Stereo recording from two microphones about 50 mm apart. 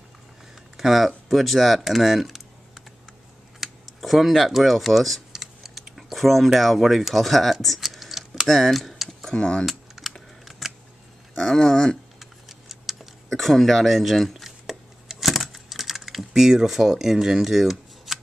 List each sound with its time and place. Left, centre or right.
0.7 s speech: centre
3.6 s computer keyboard: centre
4.5 s speech: centre
5.3 s typing: centre
9.2 s speech: centre
9.7 s typing: centre
10.4 s a sound: centre
11.3 s speech: centre
12.2 s a sound: centre
13.3 s chopping: centre
16.0 s speech: centre